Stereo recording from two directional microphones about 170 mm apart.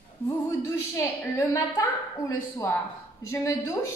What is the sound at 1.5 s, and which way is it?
A woman's voice, 20° left (ahead or behind).